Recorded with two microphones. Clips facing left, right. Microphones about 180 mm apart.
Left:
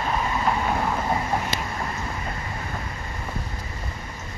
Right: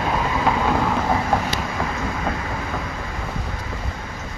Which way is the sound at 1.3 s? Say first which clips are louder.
Right 4 dB; 90° right.